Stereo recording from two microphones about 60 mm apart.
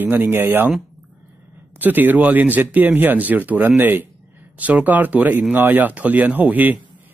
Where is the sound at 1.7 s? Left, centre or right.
Right.